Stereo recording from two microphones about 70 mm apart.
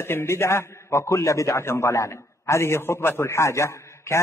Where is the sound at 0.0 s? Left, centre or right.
Left.